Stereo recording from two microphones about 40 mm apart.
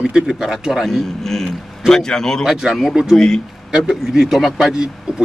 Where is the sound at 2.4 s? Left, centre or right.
Centre.